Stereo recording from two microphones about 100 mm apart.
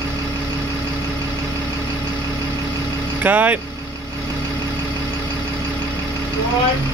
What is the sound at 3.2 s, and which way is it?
Speech, 15° right (ahead or behind).